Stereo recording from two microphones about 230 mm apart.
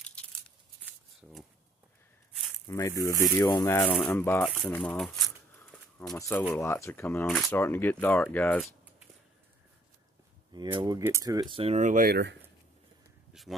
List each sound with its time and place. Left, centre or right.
0.0 s tearing: centre
2.6 s speech: centre
10.5 s speech: centre; by 12.4 s right
13.3 s speech: centre